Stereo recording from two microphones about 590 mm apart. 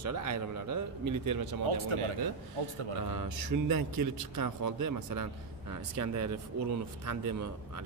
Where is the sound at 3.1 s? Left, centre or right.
Right.